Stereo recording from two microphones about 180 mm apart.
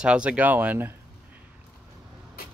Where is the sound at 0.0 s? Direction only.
5° right (ahead or behind).